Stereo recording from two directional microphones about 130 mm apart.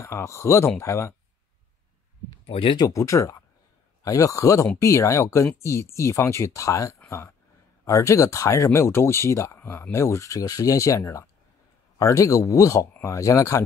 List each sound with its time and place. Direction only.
0.0 s speech: 25° left (ahead or behind)
2.4 s speech: 45° left (ahead or behind)
2.8 s speech: 25° left (ahead or behind)